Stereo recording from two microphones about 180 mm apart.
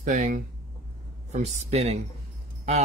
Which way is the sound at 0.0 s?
45° right (ahead or behind).